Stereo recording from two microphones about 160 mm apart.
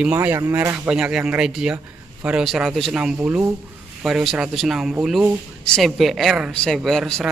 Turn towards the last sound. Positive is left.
turn(degrees=5)  # may be behind; listen again after turning